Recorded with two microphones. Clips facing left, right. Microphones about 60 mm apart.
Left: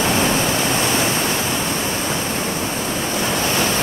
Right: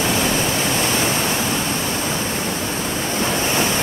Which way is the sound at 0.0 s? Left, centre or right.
Left.